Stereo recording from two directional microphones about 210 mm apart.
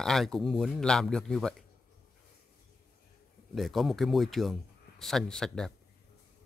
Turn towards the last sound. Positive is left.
turn(degrees=5)  # may be behind; listen again after turning